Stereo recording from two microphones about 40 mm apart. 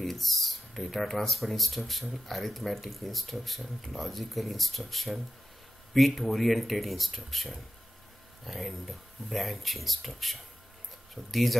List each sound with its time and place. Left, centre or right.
0.0 s speech: centre
11.2 s speech: centre